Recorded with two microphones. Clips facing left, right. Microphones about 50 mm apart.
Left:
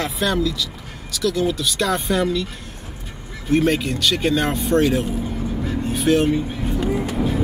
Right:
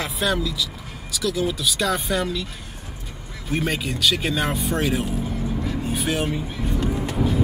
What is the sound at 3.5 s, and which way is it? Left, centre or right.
Speech, centre.